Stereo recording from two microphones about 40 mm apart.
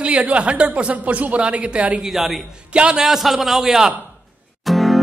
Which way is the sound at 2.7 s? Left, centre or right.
Right.